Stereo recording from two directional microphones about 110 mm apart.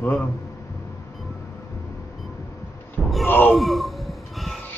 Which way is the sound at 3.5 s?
Centre (ahead or behind).